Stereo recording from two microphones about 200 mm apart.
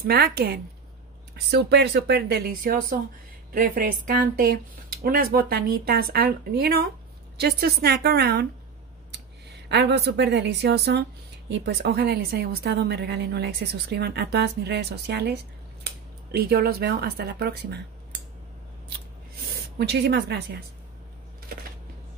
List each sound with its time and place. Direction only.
0.0 s speech: 50° right (ahead or behind)
19.8 s speech: 55° right (ahead or behind)